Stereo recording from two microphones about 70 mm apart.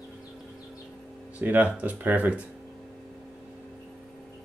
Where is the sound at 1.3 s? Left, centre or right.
Right.